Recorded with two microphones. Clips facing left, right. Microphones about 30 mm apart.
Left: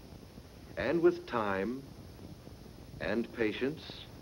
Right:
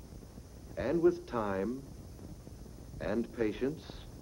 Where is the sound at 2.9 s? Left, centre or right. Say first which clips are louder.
Even; left.